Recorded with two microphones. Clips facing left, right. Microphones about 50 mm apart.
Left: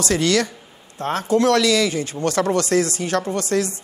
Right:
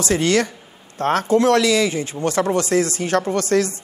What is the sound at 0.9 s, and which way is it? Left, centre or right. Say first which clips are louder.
A man's voice: right 3 dB; right.